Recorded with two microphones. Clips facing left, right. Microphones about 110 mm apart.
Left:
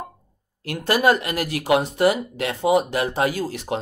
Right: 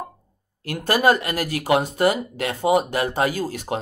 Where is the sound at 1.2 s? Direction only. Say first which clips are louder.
Even; 40° right (ahead or behind).